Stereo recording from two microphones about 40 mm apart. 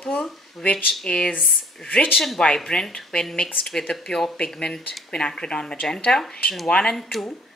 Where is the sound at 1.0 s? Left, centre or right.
Centre.